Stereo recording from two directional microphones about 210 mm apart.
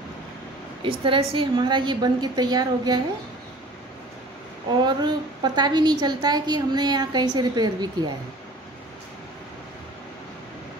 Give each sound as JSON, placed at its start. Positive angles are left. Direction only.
{"t": 0.8, "sound": "a woman's voice", "side_deg": -25}
{"t": 4.8, "sound": "a woman's voice", "side_deg": -20}